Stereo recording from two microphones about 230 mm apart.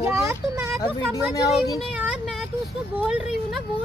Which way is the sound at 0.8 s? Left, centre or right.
Centre.